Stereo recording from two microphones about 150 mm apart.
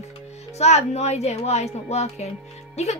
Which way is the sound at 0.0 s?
45° left (ahead or behind).